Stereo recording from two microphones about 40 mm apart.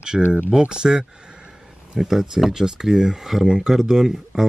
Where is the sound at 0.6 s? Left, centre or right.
Centre.